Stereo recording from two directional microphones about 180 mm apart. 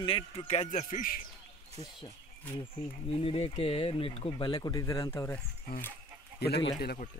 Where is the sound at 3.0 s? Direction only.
30° left (ahead or behind); by 5.4 s 15° left (ahead or behind).